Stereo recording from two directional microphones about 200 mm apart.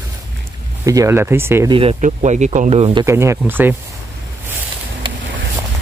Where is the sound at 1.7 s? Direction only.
30° right (ahead or behind).